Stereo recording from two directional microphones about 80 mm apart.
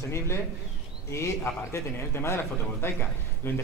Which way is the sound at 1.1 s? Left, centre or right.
Left.